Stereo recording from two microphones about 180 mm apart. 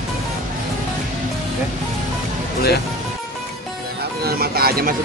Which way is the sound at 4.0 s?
60° right (ahead or behind).